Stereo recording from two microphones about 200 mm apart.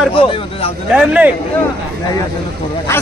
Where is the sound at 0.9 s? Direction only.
5° right (ahead or behind).